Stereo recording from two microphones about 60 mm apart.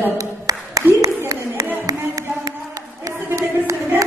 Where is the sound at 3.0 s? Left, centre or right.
Right.